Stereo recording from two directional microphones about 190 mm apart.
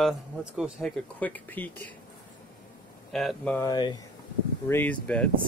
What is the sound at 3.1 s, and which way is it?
Speech, 5° left (ahead or behind).